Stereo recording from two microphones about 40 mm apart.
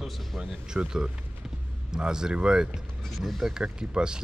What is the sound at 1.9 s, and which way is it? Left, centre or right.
Speech, centre.